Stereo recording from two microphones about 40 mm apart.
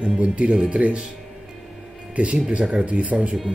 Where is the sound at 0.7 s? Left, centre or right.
Right.